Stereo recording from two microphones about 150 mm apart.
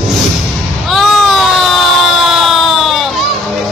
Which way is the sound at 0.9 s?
Centre (ahead or behind).